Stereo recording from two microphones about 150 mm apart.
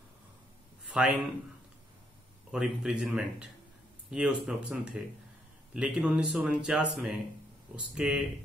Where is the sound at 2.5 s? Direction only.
5° right (ahead or behind).